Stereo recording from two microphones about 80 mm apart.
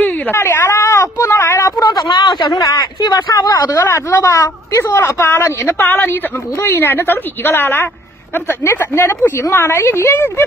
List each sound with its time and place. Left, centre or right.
0.0 s speech: left
2.1 s a man's voice: left
2.6 s speech: left
4.8 s a woman's voice: left